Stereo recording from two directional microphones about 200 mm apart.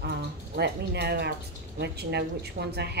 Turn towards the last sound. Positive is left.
turn(degrees=-55)  # may be behind; listen again after turning